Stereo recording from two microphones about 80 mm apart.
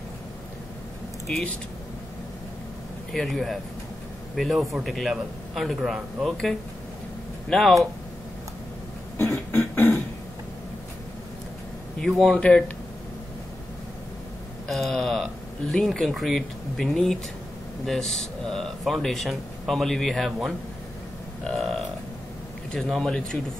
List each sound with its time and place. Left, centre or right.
3.1 s speech: centre
7.4 s speech: centre
9.2 s beatboxing: left
12.0 s speech: centre
14.7 s speech: centre
21.5 s a sound: centre
22.8 s speech: centre